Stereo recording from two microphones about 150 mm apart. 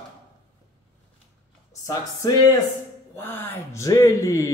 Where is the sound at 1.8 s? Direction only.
25° left (ahead or behind).